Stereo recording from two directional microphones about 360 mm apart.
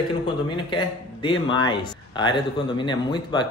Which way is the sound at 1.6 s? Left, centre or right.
Centre.